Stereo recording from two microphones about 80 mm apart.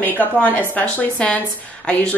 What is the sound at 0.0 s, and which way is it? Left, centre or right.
A woman's voice, left.